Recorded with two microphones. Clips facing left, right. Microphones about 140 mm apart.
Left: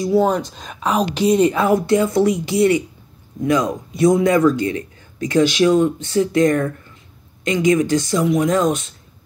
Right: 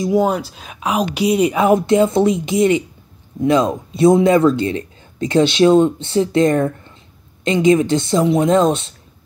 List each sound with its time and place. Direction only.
0.0 s a woman's voice: 15° right (ahead or behind)